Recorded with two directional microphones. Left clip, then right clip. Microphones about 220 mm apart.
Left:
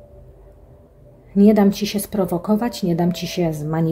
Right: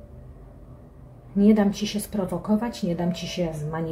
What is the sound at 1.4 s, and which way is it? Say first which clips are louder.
Speech: left 6 dB; 50° left (ahead or behind).